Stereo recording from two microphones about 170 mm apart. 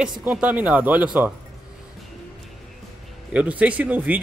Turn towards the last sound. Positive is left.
turn(degrees=-10)  # may be behind; listen again after turning